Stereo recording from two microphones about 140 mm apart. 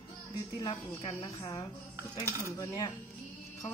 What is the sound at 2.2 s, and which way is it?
Cutlery, 15° left (ahead or behind).